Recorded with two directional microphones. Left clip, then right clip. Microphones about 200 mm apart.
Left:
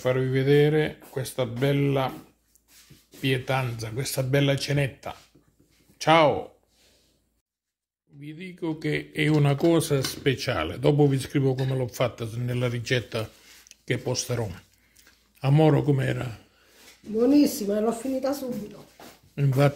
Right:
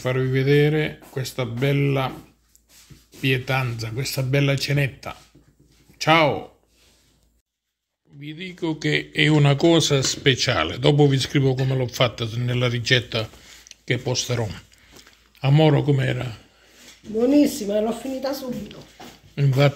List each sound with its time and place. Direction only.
0.0 s speech: 5° left (ahead or behind)
3.2 s speech: 5° left (ahead or behind)
8.2 s speech: centre (ahead or behind)
17.2 s speech: 50° left (ahead or behind)
19.3 s speech: 10° left (ahead or behind)